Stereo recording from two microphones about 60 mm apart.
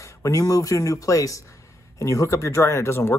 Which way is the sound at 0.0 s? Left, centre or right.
Left.